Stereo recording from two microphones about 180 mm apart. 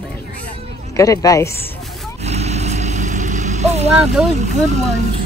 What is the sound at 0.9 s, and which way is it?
Speech, 15° left (ahead or behind).